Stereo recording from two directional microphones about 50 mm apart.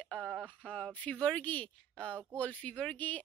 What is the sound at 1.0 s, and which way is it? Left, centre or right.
Speech, left.